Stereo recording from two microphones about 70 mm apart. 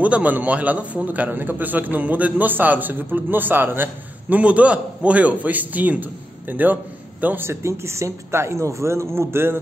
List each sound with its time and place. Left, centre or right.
0.0 s a man's voice: right
4.4 s a man's voice: centre
7.4 s speech: right